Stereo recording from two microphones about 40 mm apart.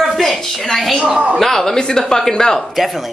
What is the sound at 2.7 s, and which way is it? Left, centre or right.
Speech, centre.